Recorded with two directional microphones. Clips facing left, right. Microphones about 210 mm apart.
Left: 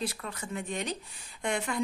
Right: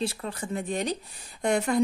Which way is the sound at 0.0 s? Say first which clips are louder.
Right 5 dB; 30° right (ahead or behind).